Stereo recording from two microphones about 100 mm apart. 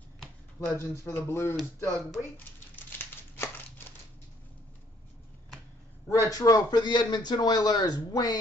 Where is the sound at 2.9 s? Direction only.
25° left (ahead or behind).